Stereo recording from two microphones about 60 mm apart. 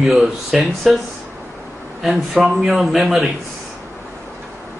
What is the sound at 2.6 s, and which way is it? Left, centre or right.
Speech, centre.